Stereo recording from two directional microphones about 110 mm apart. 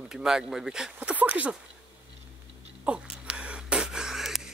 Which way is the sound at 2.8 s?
10° right (ahead or behind).